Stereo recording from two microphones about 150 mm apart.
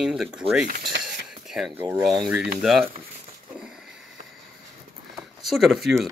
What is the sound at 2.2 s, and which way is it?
Speech, 10° right (ahead or behind).